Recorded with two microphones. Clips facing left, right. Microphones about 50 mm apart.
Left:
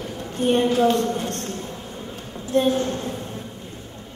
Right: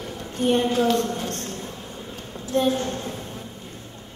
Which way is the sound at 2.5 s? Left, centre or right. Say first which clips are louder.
Left 2 dB; centre.